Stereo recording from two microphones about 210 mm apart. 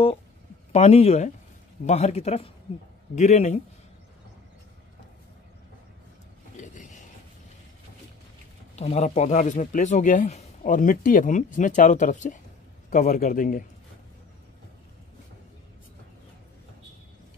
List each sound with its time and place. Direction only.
0.7 s speech: 30° left (ahead or behind)
6.5 s a sound: 35° left (ahead or behind)
8.7 s speech: 30° left (ahead or behind)